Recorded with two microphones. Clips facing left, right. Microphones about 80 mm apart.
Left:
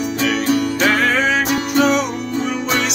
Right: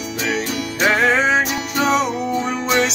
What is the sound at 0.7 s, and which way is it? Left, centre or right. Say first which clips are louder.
Music: even; right.